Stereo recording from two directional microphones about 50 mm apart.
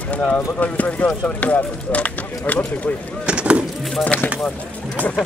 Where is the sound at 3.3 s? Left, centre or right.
Right.